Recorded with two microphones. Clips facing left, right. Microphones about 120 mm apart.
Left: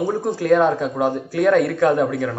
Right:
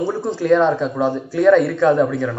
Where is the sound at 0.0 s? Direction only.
15° left (ahead or behind).